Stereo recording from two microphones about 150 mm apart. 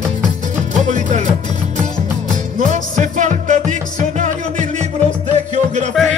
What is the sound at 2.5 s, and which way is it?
Music, 60° right (ahead or behind).